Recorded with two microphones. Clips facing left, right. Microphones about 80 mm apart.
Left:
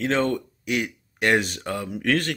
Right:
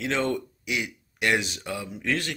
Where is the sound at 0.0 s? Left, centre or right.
Left.